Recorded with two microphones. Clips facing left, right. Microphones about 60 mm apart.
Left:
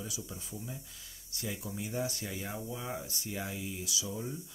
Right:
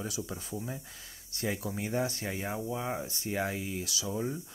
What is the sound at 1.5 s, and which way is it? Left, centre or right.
Speech, right.